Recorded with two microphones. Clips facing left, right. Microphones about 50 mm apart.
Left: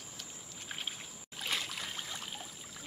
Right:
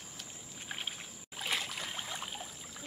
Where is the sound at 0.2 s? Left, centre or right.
Centre.